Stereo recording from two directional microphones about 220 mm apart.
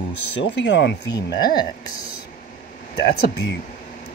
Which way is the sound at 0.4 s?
55° left (ahead or behind).